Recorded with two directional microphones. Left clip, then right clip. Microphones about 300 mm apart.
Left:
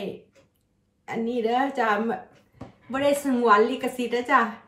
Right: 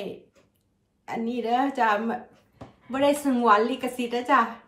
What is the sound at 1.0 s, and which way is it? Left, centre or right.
A woman's voice, centre.